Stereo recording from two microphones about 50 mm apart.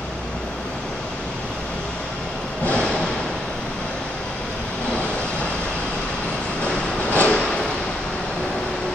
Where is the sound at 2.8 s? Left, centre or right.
Centre.